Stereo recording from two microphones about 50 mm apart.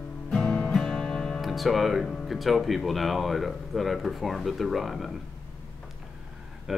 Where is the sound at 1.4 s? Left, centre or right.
Centre.